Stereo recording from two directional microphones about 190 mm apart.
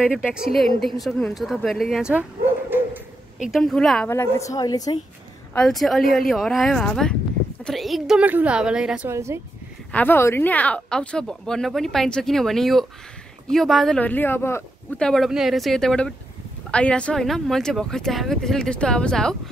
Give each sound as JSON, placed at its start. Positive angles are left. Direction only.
{"t": 0.5, "sound": "speech", "side_deg": 0}
{"t": 3.4, "sound": "speech", "side_deg": 0}
{"t": 4.1, "sound": "a woman's voice", "side_deg": 15}
{"t": 5.5, "sound": "speech", "side_deg": 5}
{"t": 9.9, "sound": "speech", "side_deg": 10}